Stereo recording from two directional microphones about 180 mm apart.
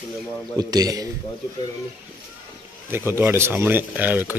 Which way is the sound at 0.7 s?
20° right (ahead or behind).